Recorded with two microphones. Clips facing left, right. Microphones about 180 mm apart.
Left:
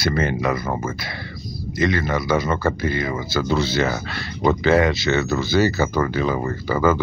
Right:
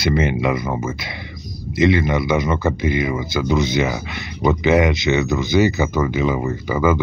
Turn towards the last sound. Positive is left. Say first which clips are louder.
# right 1 dB
turn(degrees=-15)  # may be behind; listen again after turning